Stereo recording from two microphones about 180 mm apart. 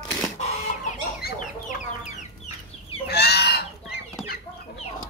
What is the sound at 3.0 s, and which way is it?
Fowl, 65° left (ahead or behind).